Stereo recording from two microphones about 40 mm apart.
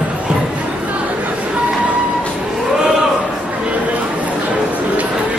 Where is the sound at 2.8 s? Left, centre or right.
Centre.